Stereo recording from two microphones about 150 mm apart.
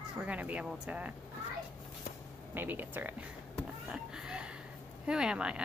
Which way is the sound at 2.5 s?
15° right (ahead or behind).